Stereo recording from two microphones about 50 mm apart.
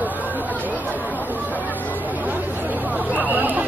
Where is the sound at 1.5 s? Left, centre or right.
Left.